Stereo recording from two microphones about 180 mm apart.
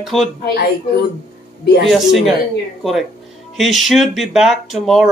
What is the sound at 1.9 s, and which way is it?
Speech, centre (ahead or behind).